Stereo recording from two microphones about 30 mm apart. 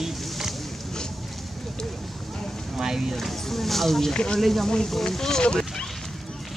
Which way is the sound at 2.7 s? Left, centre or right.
Centre.